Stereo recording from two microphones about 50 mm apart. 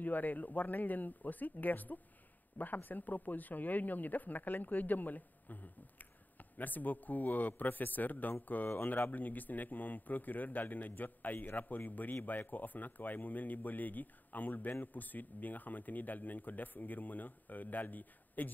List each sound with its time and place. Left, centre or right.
0.0 s a man's voice: left